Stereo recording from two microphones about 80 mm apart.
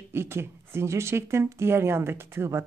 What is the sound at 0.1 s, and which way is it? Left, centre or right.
Speech, right.